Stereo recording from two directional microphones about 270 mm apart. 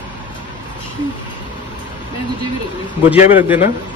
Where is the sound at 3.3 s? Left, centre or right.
Centre.